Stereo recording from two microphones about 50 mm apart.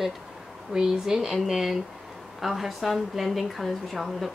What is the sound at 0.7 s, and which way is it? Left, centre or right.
Speech, centre.